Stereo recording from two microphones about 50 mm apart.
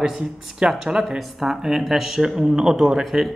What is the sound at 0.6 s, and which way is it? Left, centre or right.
Speech, centre.